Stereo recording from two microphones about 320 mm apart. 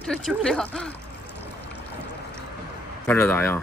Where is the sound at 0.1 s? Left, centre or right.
Centre.